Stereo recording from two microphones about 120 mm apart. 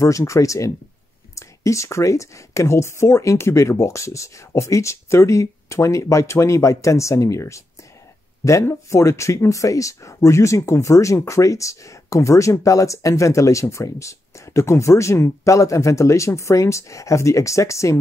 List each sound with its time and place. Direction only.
0.0 s speech: 25° left (ahead or behind)